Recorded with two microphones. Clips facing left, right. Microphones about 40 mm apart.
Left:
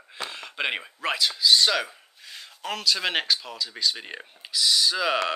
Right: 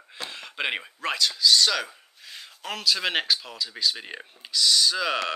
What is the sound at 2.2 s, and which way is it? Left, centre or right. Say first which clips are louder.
Speech: left 2 dB; centre.